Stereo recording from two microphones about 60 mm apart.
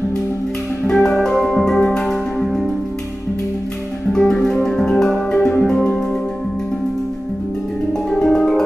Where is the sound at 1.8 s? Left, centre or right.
Centre.